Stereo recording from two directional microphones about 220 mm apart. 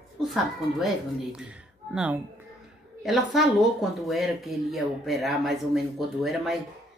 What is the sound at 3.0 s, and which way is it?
Speech, centre (ahead or behind).